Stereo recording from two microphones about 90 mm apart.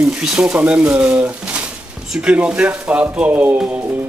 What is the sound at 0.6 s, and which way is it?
A man's voice, 15° right (ahead or behind).